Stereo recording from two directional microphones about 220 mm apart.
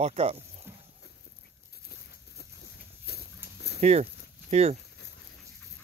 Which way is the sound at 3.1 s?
50° left (ahead or behind).